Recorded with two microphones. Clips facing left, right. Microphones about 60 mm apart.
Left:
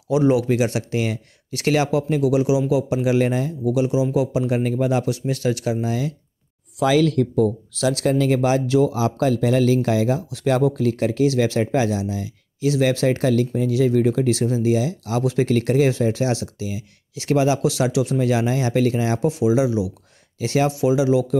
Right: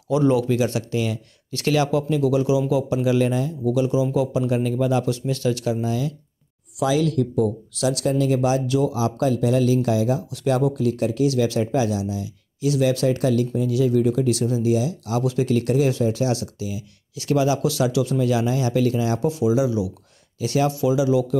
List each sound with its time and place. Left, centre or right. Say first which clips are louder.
0.1 s speech: left 1 dB; centre
3.2 s speech: left 1 dB; left
3.7 s speech: left 1 dB; centre
4.6 s speech: left 1 dB; left
5.9 s speech: left 1 dB; left
6.8 s speech: left 3 dB; left
7.8 s speech: left 2 dB; left
9.4 s speech: left 1 dB; left
10.6 s speech: left 2 dB; left
11.2 s speech: left 2 dB; left
14.3 s speech: left 1 dB; left
15.9 s speech: left 1 dB; left
19.1 s speech: left 1 dB; left